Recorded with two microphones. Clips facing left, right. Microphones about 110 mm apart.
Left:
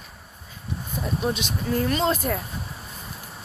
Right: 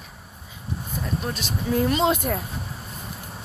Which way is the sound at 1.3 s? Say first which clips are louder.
Left 4 dB; 15° left (ahead or behind).